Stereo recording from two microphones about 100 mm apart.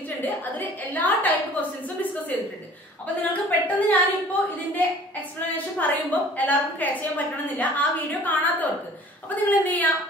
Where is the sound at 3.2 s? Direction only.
15° left (ahead or behind).